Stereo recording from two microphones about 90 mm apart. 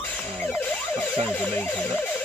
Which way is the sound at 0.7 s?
20° left (ahead or behind).